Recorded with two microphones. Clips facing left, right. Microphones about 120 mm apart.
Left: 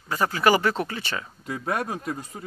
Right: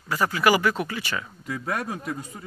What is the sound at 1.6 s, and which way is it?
Speech, 45° left (ahead or behind).